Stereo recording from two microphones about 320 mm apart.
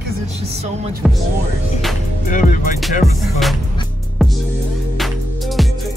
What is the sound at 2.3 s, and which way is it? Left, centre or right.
Music, left.